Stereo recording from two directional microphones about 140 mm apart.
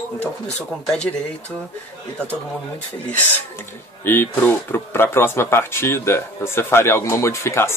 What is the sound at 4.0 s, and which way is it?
Speech, 15° left (ahead or behind).